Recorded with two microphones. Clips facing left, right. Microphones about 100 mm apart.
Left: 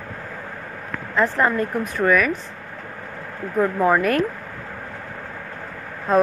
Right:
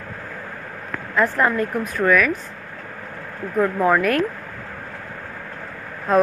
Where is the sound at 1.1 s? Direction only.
Centre (ahead or behind).